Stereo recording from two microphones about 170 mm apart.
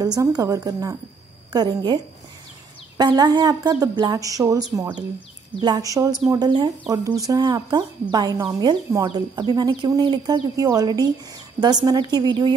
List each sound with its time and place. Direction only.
0.0 s a woman's voice: 20° right (ahead or behind)
3.0 s speech: 25° right (ahead or behind)